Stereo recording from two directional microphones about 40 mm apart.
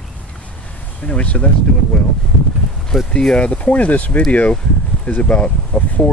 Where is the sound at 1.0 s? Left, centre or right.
Left.